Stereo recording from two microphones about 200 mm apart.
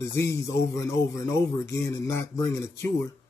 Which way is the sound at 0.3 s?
15° left (ahead or behind).